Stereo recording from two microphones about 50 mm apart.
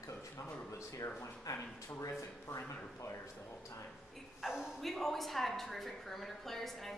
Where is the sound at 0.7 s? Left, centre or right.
Left.